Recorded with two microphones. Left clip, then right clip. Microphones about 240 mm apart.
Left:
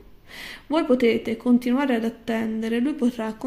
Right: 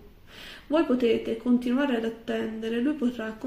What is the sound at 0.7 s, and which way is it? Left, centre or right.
Speech, left.